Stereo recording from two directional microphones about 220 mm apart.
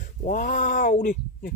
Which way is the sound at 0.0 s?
35° left (ahead or behind).